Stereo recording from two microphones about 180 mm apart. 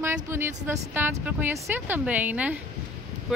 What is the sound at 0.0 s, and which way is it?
Speech, 15° right (ahead or behind).